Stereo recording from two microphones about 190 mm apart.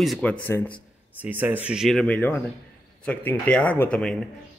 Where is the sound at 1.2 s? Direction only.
10° right (ahead or behind).